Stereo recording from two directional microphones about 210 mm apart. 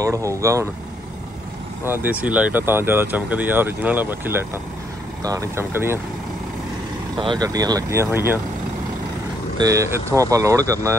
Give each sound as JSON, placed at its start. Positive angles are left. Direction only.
{"t": 0.0, "sound": "speech", "side_deg": -15}
{"t": 1.9, "sound": "speech", "side_deg": -5}
{"t": 7.2, "sound": "speech", "side_deg": -20}
{"t": 9.6, "sound": "speech", "side_deg": -15}